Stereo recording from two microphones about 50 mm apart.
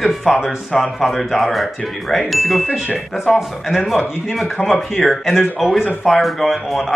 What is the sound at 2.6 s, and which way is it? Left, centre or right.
Speech, centre.